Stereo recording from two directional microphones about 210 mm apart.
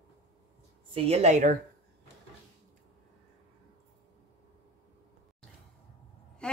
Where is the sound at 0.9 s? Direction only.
30° right (ahead or behind).